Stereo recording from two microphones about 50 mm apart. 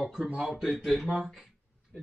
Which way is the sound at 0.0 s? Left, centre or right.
Centre.